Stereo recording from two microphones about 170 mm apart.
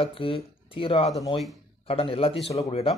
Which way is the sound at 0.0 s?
30° left (ahead or behind).